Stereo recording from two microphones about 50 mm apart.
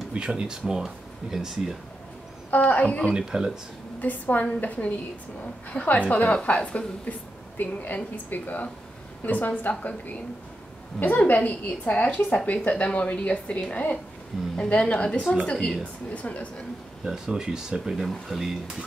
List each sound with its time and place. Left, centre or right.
0.1 s speech: right
2.5 s a woman's voice: left
3.1 s speech: centre
4.0 s a woman's voice: left
17.0 s speech: centre